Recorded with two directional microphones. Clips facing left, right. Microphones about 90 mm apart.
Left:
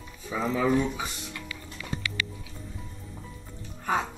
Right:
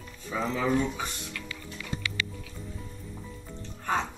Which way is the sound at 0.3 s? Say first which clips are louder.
Left 2 dB; 5° left (ahead or behind).